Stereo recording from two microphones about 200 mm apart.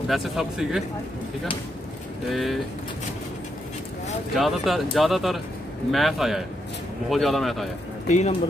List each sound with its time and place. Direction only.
0.1 s speech: centre (ahead or behind)
2.3 s speech: centre (ahead or behind)
4.4 s speech: centre (ahead or behind)
8.1 s speech: 35° left (ahead or behind)